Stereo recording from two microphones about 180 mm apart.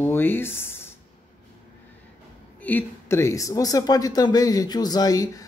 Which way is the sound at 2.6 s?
10° left (ahead or behind).